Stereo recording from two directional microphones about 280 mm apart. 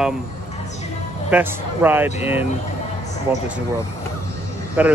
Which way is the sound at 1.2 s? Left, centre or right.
Centre.